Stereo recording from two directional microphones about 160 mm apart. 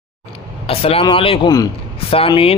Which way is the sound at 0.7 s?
40° left (ahead or behind).